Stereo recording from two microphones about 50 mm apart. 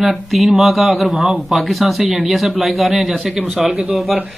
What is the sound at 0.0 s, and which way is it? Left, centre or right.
A man's voice, centre.